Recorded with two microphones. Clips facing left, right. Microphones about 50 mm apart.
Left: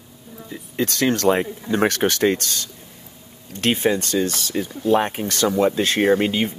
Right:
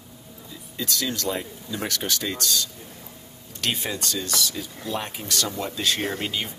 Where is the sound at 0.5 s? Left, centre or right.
Left.